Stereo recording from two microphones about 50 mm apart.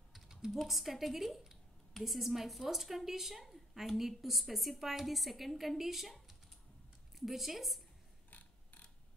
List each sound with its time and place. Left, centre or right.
0.1 s typing: centre
0.6 s a woman's voice: centre
8.3 s a sound: left